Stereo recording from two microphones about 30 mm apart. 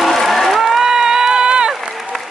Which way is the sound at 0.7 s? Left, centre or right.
Centre.